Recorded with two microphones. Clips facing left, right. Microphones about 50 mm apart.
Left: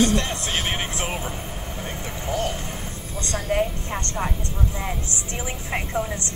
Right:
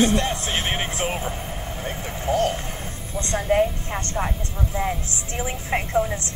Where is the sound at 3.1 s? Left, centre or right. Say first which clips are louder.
Right 4 dB; right.